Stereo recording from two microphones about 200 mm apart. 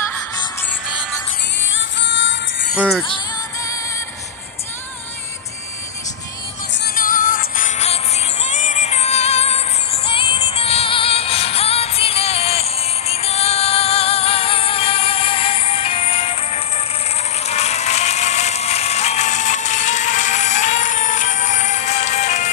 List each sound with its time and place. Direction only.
1.6 s music: 70° left (ahead or behind)
6.7 s music: 50° left (ahead or behind); by 22.5 s 35° left (ahead or behind)